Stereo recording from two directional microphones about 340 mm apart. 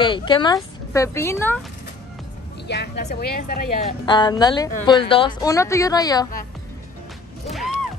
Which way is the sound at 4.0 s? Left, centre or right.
Centre.